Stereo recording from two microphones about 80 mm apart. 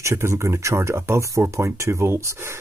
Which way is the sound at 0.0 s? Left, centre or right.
Right.